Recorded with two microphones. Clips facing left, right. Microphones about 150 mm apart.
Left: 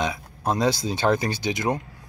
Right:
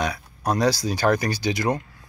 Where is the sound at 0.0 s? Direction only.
20° left (ahead or behind).